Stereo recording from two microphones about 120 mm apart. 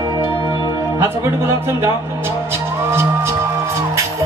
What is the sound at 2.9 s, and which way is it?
Music, 20° right (ahead or behind).